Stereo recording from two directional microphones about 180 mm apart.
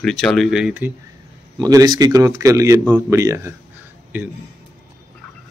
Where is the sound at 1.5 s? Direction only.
20° right (ahead or behind).